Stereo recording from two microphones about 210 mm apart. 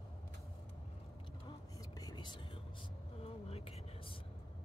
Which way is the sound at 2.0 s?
20° left (ahead or behind).